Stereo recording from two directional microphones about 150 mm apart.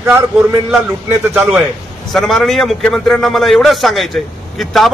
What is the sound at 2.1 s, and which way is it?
A man's voice, centre (ahead or behind).